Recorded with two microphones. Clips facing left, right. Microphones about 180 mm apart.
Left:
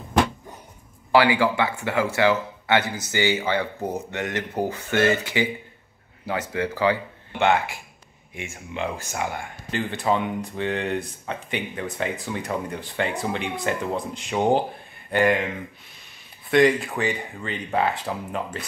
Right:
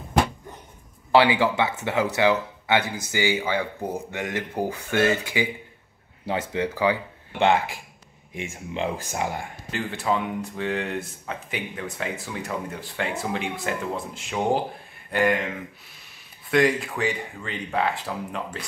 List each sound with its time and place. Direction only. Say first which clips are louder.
1.1 s speech: even; 20° right (ahead or behind)
7.3 s speech: even; 30° right (ahead or behind)
9.7 s speech: left 2 dB; centre (ahead or behind)